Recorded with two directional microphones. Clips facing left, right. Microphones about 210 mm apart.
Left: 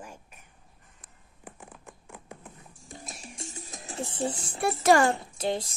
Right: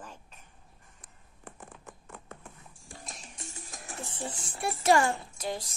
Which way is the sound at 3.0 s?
5° left (ahead or behind).